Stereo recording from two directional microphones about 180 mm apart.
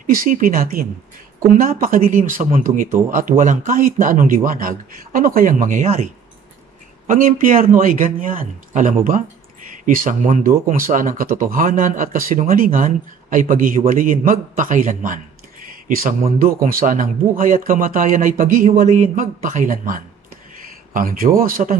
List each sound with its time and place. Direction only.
0.0 s speech: 50° right (ahead or behind)
7.1 s speech: 50° right (ahead or behind)
15.6 s a sound: 50° right (ahead or behind)
16.6 s speech: 50° right (ahead or behind)